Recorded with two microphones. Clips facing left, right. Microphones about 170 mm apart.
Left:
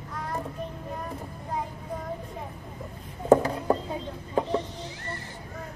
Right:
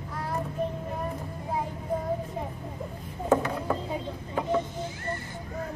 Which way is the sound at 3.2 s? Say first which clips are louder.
Left 5 dB; 35° left (ahead or behind).